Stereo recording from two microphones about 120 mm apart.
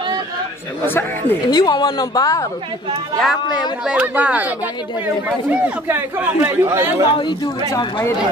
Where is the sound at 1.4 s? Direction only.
35° left (ahead or behind).